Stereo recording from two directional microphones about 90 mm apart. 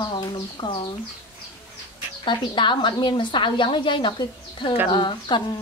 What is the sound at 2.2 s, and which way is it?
A woman's voice, 65° left (ahead or behind).